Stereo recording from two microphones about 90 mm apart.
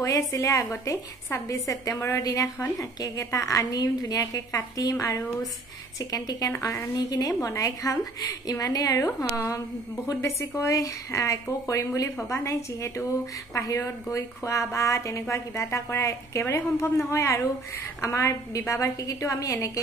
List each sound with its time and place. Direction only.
0.0 s a woman's voice: 35° left (ahead or behind)